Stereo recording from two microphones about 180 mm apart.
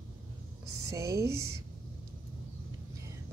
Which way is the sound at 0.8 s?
15° right (ahead or behind).